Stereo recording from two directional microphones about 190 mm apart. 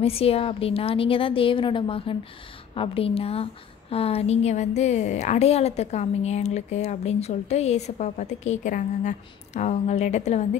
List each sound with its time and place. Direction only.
0.0 s a woman's voice: 30° left (ahead or behind)